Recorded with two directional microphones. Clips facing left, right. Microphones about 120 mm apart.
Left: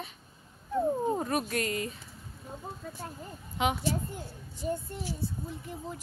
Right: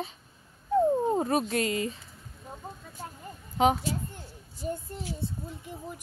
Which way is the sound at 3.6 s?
35° right (ahead or behind).